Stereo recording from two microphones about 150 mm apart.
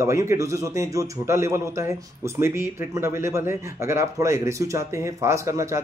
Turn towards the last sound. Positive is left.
turn(degrees=-20)  # may be behind; listen again after turning